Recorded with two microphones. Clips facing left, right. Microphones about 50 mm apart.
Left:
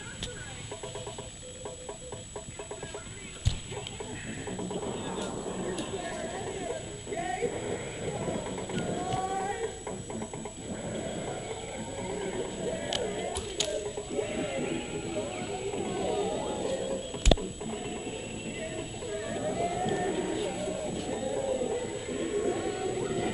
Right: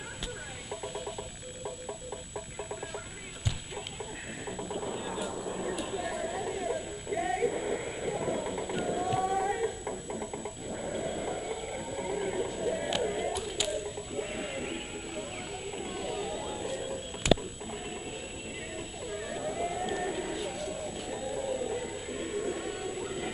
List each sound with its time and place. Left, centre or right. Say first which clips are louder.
4.5 s music: left 1 dB; centre
10.0 s music: right 1 dB; centre
10.3 s a sound: right 1 dB; centre
16.8 s music: left 2 dB; centre
18.6 s a sound: left 2 dB; centre
21.0 s music: left 3 dB; centre